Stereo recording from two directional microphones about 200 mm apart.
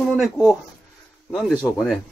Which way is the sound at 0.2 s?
Centre (ahead or behind).